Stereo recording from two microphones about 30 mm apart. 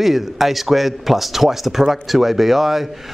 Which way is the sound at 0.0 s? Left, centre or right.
Centre.